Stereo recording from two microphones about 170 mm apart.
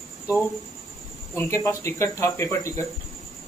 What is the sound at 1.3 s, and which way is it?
A man's voice, 15° left (ahead or behind).